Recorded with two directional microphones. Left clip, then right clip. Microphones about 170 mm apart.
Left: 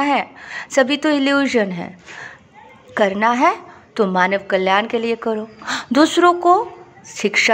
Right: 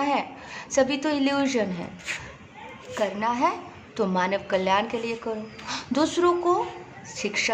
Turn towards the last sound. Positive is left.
turn(degrees=35)  # may be behind; listen again after turning